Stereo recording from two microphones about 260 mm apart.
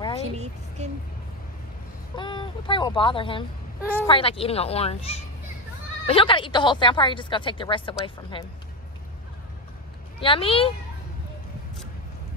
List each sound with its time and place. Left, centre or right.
0.8 s speech: right
2.1 s speech: centre
3.8 s a woman's voice: centre
4.1 s a woman's voice: left
10.2 s a woman's voice: left